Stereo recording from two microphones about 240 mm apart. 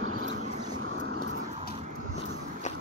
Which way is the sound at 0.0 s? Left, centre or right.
Right.